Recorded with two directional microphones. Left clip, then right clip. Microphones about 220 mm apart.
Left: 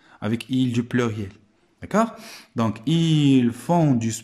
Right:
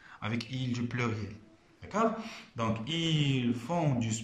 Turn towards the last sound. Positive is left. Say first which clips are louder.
# left 11 dB
turn(degrees=50)  # may be behind; listen again after turning